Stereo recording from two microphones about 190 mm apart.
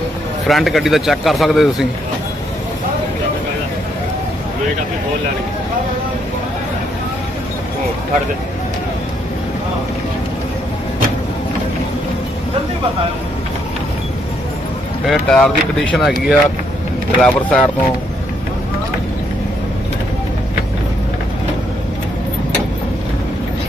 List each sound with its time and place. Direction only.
0.5 s speech: centre (ahead or behind)
15.0 s speech: 5° left (ahead or behind)